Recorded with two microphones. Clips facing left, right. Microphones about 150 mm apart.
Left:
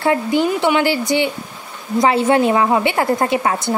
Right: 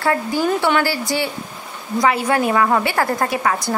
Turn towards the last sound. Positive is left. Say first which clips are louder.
# left 2 dB
turn(degrees=25)  # may be behind; listen again after turning